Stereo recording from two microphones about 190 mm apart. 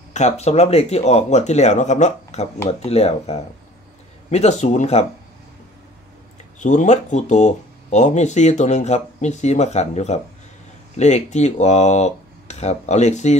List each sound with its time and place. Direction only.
0.1 s speech: 35° left (ahead or behind)
6.6 s speech: 40° left (ahead or behind)